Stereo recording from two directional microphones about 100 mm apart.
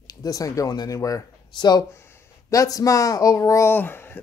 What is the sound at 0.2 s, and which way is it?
Speech, 35° left (ahead or behind).